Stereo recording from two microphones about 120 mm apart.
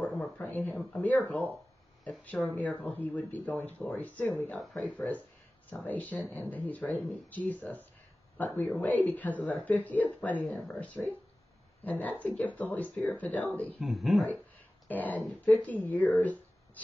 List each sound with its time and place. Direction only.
0.0 s a sound: 10° left (ahead or behind)
0.7 s speech: 10° left (ahead or behind)
2.3 s speech: 10° left (ahead or behind)
13.7 s speech: centre (ahead or behind)
14.9 s speech: 15° left (ahead or behind)